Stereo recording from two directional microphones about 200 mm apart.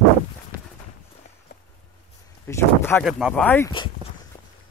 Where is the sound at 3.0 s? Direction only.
Centre (ahead or behind).